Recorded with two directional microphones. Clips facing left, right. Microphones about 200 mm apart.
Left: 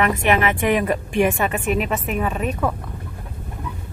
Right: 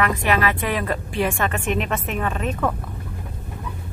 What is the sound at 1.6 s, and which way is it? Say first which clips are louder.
Speech: left 2 dB; 5° left (ahead or behind).